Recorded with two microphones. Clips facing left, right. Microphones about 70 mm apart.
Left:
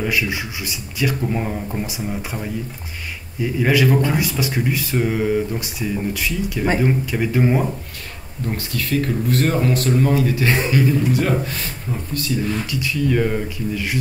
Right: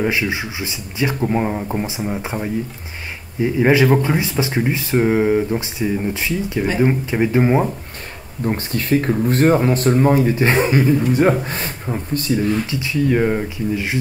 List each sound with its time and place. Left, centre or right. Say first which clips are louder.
0.0 s speech: right 2 dB; right